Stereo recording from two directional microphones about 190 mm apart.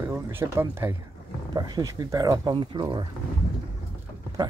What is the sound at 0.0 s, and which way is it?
Speech, 10° right (ahead or behind).